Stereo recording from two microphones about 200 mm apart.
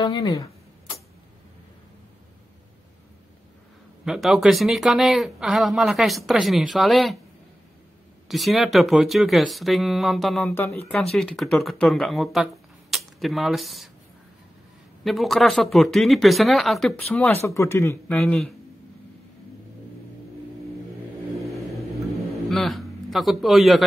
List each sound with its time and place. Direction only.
0.0 s a sound: 20° left (ahead or behind)
4.0 s speech: centre (ahead or behind)
8.3 s speech: centre (ahead or behind)
10.6 s speech: 15° left (ahead or behind)
11.0 s speech: centre (ahead or behind)
15.0 s speech: centre (ahead or behind)
18.2 s speech: centre (ahead or behind)
22.5 s a man's voice: centre (ahead or behind)